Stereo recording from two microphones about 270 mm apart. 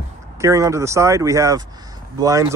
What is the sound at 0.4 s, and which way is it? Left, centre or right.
Speech, centre.